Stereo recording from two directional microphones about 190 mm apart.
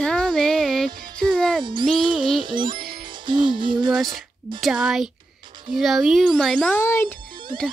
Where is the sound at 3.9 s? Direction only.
Centre (ahead or behind).